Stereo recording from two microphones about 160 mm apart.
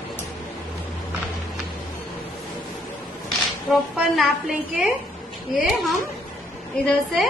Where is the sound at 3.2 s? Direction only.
Centre (ahead or behind).